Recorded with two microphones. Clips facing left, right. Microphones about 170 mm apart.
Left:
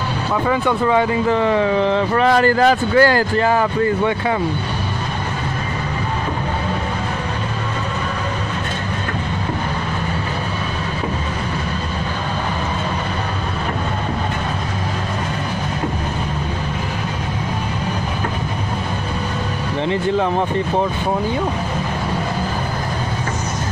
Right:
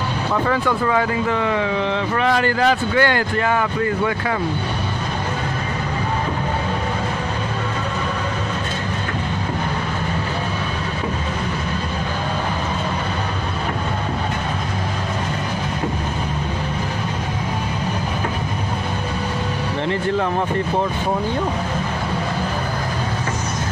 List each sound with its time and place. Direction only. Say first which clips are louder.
0.7 s speech: left 3 dB; 25° left (ahead or behind)